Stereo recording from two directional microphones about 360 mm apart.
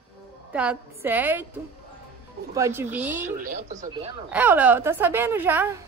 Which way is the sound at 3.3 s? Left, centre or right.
Right.